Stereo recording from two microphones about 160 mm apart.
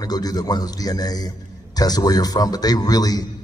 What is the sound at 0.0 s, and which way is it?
A man's voice, 25° left (ahead or behind).